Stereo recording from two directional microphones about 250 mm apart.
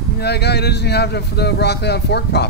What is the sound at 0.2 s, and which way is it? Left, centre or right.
Speech, left.